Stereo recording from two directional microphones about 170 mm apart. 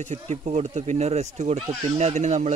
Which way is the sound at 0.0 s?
40° right (ahead or behind).